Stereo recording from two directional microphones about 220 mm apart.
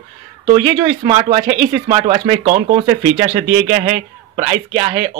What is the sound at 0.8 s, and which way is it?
Speech, 25° right (ahead or behind).